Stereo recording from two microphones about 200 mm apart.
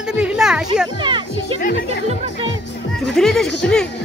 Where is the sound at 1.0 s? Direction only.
25° right (ahead or behind).